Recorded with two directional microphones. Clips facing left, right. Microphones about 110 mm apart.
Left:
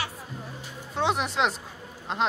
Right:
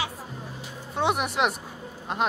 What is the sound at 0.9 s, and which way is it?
Speech, 10° right (ahead or behind).